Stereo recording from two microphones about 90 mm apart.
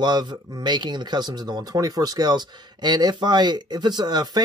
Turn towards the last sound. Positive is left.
turn(degrees=-50)  # may be behind; listen again after turning